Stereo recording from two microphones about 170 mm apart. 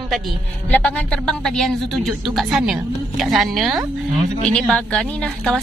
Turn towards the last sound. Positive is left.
turn(degrees=5)  # may be behind; listen again after turning